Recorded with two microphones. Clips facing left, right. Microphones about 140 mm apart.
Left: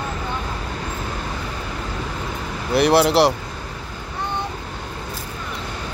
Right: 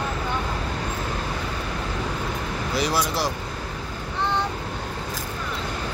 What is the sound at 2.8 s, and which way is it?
Speech, 65° left (ahead or behind).